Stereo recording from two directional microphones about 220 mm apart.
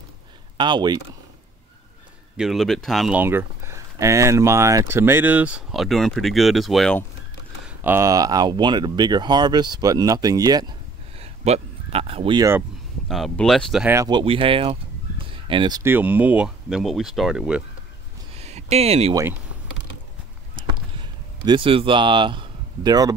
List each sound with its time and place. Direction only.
0.6 s speech: 20° right (ahead or behind)
2.3 s speech: centre (ahead or behind)
7.6 s speech: 10° right (ahead or behind)
13.1 s speech: centre (ahead or behind)
13.9 s speech: 20° right (ahead or behind); by 17.6 s 5° right (ahead or behind)
18.4 s a sound: 30° right (ahead or behind)
20.5 s a sound: 20° right (ahead or behind)